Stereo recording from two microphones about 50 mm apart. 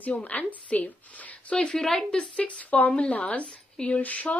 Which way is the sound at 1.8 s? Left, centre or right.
Centre.